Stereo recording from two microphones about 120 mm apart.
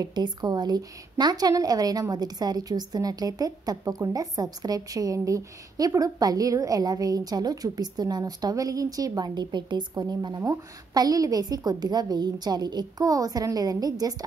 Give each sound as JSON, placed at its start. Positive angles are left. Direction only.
{"t": 0.0, "sound": "a woman's voice", "side_deg": -35}